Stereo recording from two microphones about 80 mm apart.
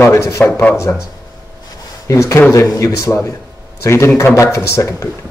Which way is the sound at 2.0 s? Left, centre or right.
Left.